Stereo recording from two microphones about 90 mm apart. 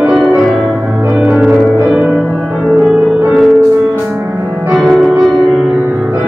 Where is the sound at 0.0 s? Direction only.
10° right (ahead or behind).